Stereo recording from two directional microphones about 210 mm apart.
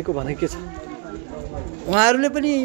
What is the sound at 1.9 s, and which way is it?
Speech, 5° right (ahead or behind).